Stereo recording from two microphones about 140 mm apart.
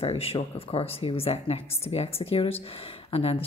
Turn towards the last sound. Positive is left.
turn(degrees=45)  # may be behind; listen again after turning